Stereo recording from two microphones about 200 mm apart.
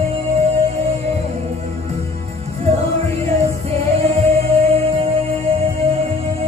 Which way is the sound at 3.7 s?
35° right (ahead or behind).